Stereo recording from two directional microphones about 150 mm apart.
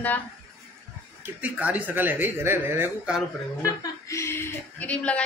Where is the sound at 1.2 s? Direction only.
10° right (ahead or behind).